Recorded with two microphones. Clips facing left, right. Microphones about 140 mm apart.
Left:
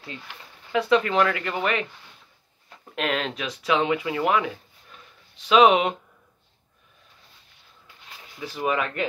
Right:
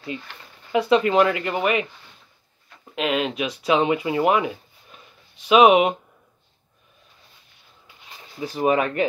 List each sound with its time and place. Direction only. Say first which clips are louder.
0.7 s speech: right 3 dB; 15° right (ahead or behind)
2.8 s speech: right 3 dB; 5° right (ahead or behind)
3.6 s speech: right 3 dB; 20° right (ahead or behind)
5.5 s speech: right 3 dB; 15° right (ahead or behind)
8.3 s speech: right 6 dB; 35° right (ahead or behind)